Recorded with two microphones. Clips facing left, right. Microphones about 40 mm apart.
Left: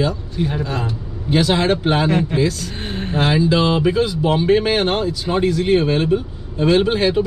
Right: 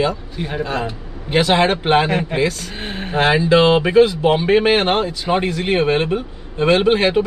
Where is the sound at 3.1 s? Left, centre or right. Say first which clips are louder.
Right 3 dB; right.